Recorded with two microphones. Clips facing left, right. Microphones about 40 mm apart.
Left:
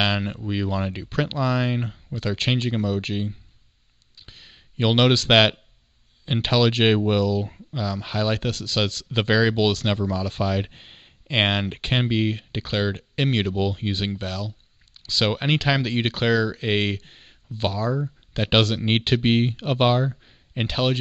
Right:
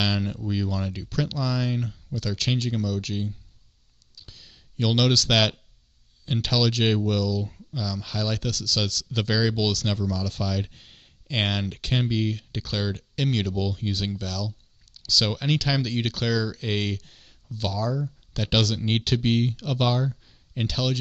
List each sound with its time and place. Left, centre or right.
0.0 s speech: left
4.1 s a sound: left
6.2 s speech: left